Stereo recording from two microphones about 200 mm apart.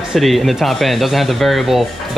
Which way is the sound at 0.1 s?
Centre (ahead or behind).